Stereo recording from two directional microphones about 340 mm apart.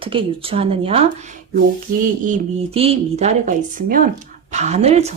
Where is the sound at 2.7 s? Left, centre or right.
Centre.